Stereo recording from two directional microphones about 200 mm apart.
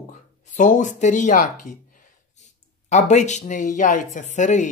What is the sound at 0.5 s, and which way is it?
Speech, 40° left (ahead or behind).